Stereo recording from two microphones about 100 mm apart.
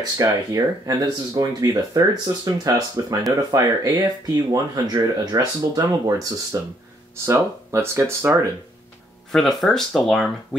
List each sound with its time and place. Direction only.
0.2 s speech: 35° right (ahead or behind)
7.2 s speech: 25° right (ahead or behind)
9.3 s speech: 5° left (ahead or behind)